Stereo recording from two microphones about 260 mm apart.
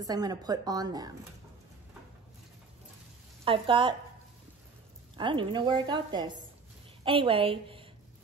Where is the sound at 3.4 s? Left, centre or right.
Centre.